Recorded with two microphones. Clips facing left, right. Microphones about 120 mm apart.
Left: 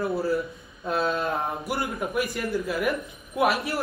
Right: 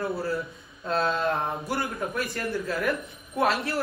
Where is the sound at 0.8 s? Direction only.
10° left (ahead or behind).